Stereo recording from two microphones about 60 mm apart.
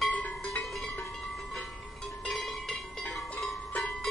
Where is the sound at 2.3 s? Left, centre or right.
Centre.